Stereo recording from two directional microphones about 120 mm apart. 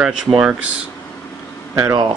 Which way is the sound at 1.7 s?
25° right (ahead or behind).